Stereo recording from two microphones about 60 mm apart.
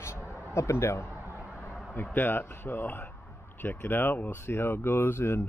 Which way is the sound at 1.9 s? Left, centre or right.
Left.